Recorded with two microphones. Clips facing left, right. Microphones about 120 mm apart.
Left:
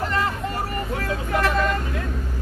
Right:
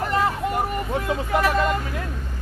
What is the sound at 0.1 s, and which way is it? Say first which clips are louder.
Vehicle: right 3 dB; 15° right (ahead or behind).